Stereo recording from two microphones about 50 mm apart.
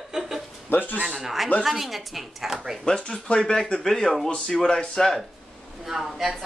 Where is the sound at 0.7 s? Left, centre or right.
Left.